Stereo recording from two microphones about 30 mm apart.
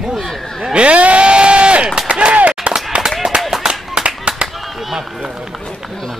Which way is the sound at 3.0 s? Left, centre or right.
Right.